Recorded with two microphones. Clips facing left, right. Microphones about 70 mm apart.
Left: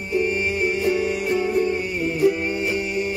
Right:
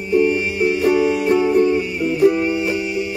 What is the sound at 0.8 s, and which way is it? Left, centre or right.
Music, right.